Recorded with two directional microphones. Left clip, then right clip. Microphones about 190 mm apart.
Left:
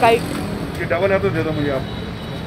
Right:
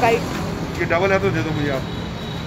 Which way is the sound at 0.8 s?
50° right (ahead or behind).